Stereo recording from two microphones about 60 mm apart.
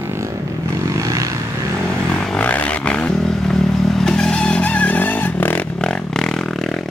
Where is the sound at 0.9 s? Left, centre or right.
Right.